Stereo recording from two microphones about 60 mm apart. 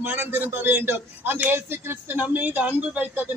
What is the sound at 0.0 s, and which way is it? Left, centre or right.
A man's voice, right.